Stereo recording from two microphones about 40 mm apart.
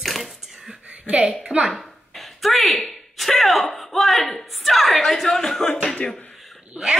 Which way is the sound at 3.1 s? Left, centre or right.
Centre.